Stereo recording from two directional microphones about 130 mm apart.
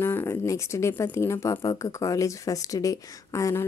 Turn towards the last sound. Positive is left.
turn(degrees=25)  # may be behind; listen again after turning